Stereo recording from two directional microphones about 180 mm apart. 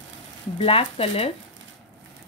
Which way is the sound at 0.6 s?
30° left (ahead or behind).